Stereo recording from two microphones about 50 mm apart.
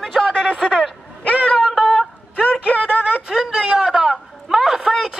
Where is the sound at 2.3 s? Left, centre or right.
Left.